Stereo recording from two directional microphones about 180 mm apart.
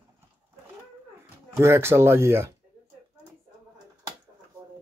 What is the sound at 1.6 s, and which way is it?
Speech, 15° right (ahead or behind).